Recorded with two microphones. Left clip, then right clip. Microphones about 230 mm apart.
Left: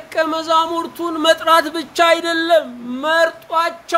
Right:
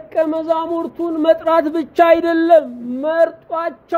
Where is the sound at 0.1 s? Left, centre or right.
Centre.